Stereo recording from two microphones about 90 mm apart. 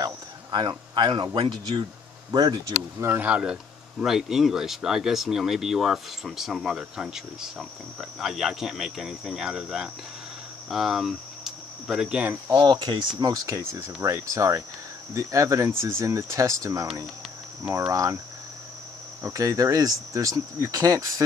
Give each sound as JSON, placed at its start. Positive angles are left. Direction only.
{"t": 0.0, "sound": "speech", "side_deg": -55}
{"t": 3.0, "sound": "speech", "side_deg": -25}
{"t": 3.3, "sound": "speech", "side_deg": -10}
{"t": 12.5, "sound": "speech", "side_deg": -55}
{"t": 13.2, "sound": "speech", "side_deg": -40}
{"t": 19.2, "sound": "speech", "side_deg": -35}